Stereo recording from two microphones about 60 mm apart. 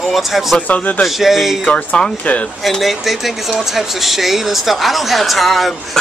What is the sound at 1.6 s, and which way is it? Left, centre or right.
Speech, left.